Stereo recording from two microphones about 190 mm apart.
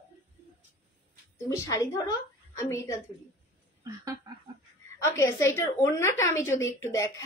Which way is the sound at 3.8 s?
15° right (ahead or behind).